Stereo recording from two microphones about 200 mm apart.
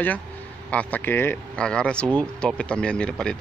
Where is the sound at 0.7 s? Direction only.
5° left (ahead or behind).